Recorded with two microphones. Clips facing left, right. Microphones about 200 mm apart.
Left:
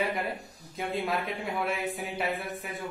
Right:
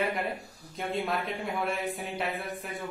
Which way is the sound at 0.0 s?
Centre (ahead or behind).